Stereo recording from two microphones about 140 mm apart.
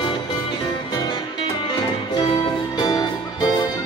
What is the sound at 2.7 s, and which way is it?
Music, 30° left (ahead or behind).